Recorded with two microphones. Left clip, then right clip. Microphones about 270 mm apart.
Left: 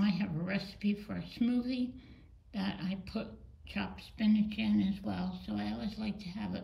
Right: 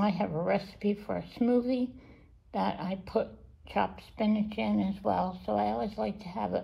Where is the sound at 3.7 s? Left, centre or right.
Centre.